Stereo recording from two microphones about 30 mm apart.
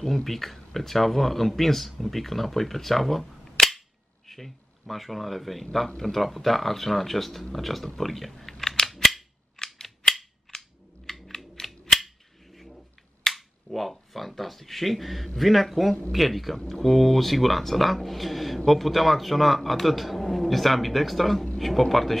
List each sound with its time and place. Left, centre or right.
0.0 s a man's voice: centre
3.6 s cap gun: left
4.3 s a man's voice: centre
8.5 s scissors: centre
8.9 s scissors: centre
9.6 s cap gun: centre
11.1 s typing: centre
11.6 s cap gun: centre
12.5 s finger snapping: centre
15.2 s a man's voice: centre